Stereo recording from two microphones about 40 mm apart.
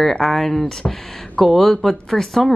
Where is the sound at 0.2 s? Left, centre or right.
Centre.